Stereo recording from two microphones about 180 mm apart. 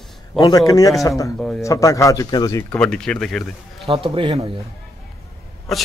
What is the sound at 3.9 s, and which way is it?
Speech, 30° right (ahead or behind).